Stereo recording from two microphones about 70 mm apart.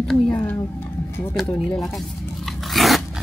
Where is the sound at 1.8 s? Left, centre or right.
Centre.